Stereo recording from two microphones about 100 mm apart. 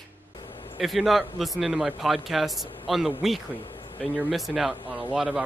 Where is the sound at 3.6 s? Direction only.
60° left (ahead or behind).